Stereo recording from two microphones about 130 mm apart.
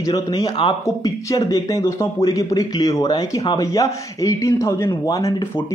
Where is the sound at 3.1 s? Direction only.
45° left (ahead or behind).